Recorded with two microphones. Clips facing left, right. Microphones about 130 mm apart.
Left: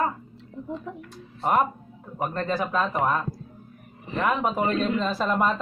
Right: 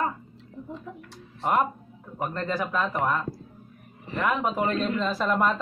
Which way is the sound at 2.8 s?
15° left (ahead or behind).